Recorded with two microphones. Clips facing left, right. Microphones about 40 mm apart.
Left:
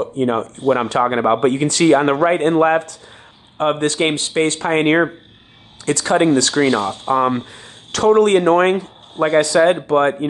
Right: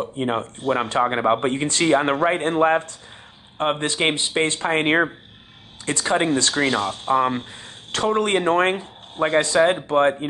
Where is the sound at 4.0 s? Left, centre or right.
Centre.